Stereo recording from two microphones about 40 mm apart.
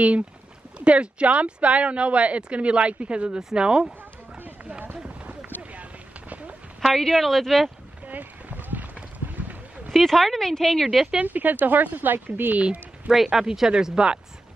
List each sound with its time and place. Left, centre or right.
0.7 s speech: right
4.9 s run: right
5.6 s clip-clop: right
6.9 s speech: centre
8.1 s a sound: right
9.9 s speech: centre
11.2 s speech: right
12.5 s speech: right
13.1 s speech: centre